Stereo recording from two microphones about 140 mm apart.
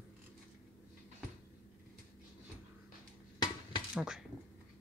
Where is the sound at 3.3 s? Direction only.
30° left (ahead or behind).